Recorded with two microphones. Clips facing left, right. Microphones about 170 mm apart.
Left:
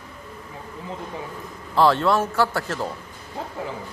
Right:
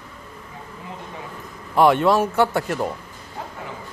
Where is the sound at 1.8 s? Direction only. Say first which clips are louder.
Right 2 dB; 15° right (ahead or behind).